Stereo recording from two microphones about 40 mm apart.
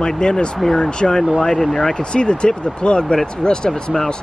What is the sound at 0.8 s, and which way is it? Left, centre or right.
Speech, centre.